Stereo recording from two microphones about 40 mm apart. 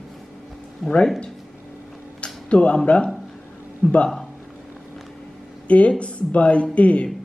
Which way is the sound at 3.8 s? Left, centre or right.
Left.